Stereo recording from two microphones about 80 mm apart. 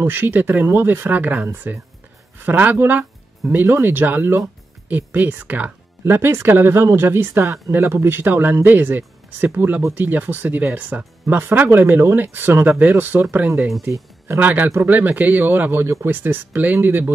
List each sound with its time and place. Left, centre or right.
0.0 s speech: right
14.4 s speech: right
16.2 s speech: right